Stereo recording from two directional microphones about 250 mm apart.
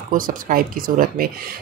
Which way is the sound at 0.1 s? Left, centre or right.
Right.